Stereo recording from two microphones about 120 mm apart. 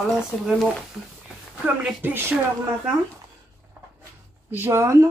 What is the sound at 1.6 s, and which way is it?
Speech, 20° right (ahead or behind).